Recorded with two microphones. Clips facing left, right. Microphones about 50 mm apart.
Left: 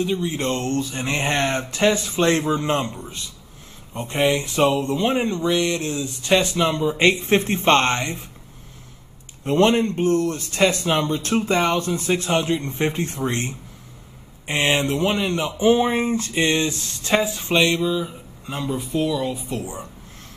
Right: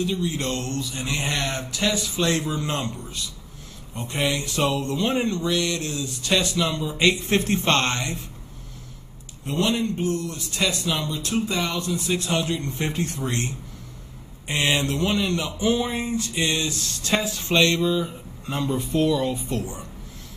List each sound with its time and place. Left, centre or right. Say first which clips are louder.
0.0 s speech: left 3 dB; left
9.4 s speech: left 6 dB; left; by 19.6 s centre
19.6 s speech: left 2 dB; centre